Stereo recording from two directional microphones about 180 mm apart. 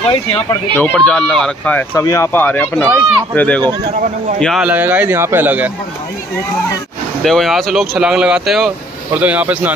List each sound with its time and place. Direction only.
0.1 s speech: 25° left (ahead or behind)
0.7 s speech: 10° left (ahead or behind); by 5.7 s 10° right (ahead or behind)
7.2 s speech: centre (ahead or behind)